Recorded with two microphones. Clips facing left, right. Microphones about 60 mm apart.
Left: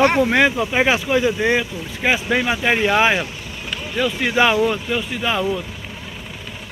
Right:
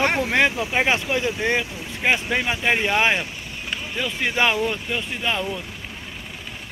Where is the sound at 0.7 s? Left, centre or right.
Centre.